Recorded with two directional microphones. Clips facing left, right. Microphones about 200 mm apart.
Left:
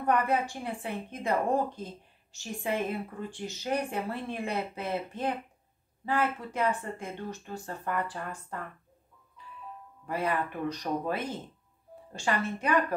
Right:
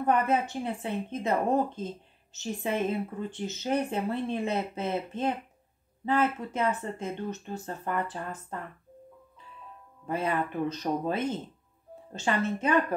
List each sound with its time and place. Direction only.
0.0 s a woman's voice: 25° right (ahead or behind)
10.0 s a woman's voice: 25° right (ahead or behind)